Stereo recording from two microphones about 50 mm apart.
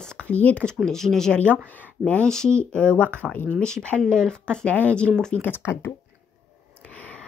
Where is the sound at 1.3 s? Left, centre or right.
Left.